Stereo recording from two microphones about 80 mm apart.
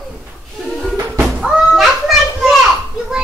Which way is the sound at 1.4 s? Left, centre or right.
Centre.